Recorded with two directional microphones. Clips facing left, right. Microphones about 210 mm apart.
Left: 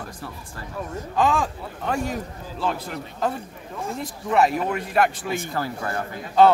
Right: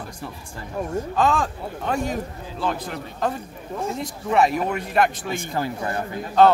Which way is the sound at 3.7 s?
25° right (ahead or behind).